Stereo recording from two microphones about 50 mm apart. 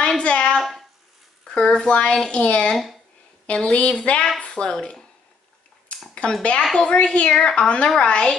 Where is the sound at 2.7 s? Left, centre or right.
Centre.